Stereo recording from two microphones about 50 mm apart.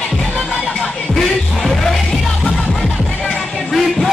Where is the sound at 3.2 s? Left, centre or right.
Centre.